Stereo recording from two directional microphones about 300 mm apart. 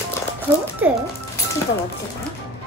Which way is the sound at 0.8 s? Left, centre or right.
Centre.